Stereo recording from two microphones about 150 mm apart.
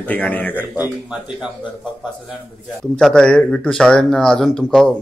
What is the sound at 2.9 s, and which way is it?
Speech, 5° left (ahead or behind).